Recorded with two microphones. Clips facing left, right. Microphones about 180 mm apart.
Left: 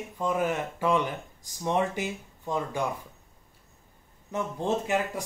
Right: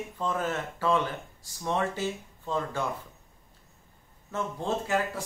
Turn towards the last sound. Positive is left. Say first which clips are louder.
# left 1 dB
turn(degrees=20)  # may be behind; listen again after turning